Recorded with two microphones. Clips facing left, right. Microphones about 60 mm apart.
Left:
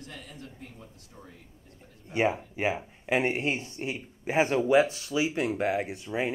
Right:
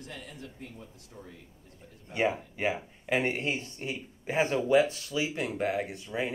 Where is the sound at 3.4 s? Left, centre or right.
Left.